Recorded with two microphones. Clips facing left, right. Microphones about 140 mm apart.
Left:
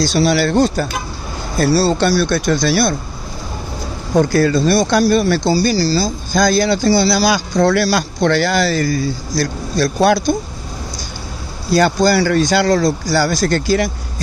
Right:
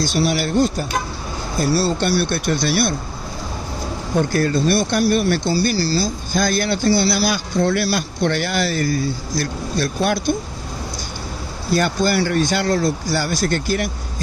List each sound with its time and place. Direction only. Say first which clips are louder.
0.0 s speech: left 5 dB; 90° left
4.2 s speech: left 5 dB; 90° left
11.7 s speech: left 5 dB; 90° left